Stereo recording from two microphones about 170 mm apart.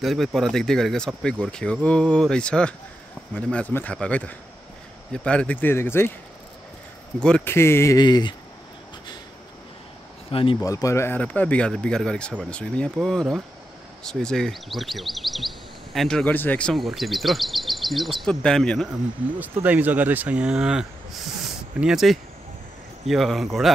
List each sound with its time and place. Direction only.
0.0 s speech: centre (ahead or behind)
7.2 s speech: 5° left (ahead or behind); by 8.4 s 25° left (ahead or behind)
10.3 s speech: 30° left (ahead or behind)
10.6 s speech: 20° left (ahead or behind); by 18.9 s 5° left (ahead or behind)
19.4 s speech: 10° right (ahead or behind)